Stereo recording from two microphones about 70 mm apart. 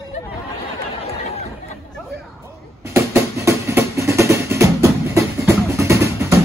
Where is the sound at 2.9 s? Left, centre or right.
Right.